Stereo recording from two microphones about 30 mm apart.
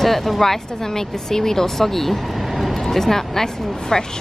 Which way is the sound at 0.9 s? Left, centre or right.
Centre.